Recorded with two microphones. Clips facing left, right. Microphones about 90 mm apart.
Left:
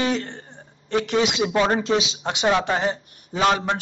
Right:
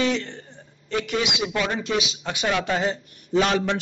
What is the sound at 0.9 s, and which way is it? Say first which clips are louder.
Speech: left 4 dB; 25° left (ahead or behind).